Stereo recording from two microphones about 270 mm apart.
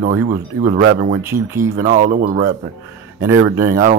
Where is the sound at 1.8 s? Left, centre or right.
Right.